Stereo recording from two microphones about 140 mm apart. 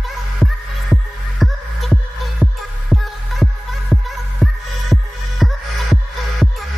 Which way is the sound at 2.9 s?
Centre (ahead or behind).